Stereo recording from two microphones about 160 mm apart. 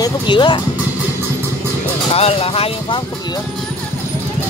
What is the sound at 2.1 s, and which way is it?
Speech, 40° left (ahead or behind).